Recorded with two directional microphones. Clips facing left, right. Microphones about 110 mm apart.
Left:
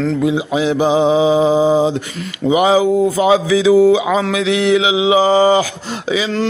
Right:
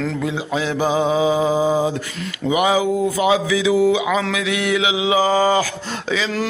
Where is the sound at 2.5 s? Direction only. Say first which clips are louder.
Left 5 dB; 30° left (ahead or behind).